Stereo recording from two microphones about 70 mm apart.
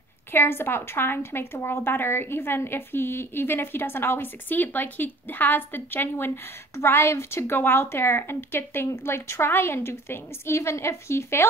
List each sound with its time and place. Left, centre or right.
0.3 s a woman's voice: left